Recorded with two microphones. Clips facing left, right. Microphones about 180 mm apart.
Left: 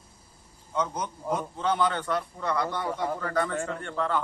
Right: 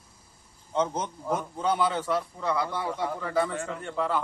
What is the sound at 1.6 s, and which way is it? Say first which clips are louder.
A man's voice: even; 10° right (ahead or behind).